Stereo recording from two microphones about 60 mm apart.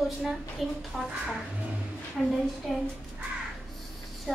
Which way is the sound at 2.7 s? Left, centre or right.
Centre.